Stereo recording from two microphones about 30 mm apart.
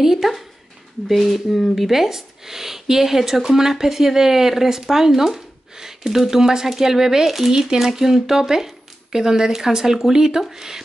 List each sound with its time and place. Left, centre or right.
0.0 s speech: centre
1.9 s speech: centre